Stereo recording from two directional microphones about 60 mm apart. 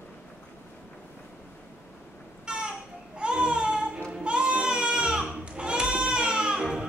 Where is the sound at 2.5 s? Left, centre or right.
Centre.